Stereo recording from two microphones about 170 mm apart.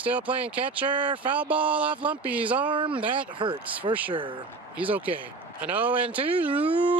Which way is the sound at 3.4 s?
30° right (ahead or behind).